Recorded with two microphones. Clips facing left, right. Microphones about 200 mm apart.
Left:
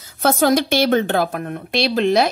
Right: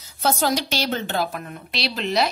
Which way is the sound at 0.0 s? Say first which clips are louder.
Left 6 dB; 55° left (ahead or behind).